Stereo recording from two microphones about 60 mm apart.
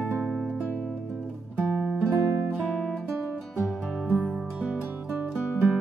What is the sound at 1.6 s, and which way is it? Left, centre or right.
Music, centre.